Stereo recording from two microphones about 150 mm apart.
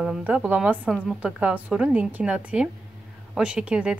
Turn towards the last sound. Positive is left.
turn(degrees=-5)  # may be behind; listen again after turning